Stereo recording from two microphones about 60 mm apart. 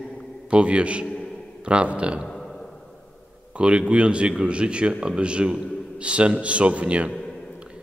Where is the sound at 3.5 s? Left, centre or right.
Centre.